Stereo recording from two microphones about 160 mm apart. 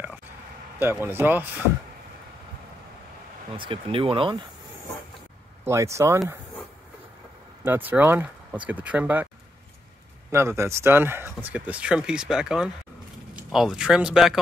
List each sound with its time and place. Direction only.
0.7 s speech: 15° right (ahead or behind)
3.5 s speech: 35° right (ahead or behind)
5.7 s speech: 20° right (ahead or behind)
7.6 s speech: 10° right (ahead or behind)
10.3 s speech: 15° right (ahead or behind)